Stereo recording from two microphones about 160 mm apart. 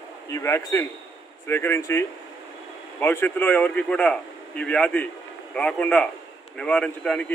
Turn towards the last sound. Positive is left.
turn(degrees=5)  # may be behind; listen again after turning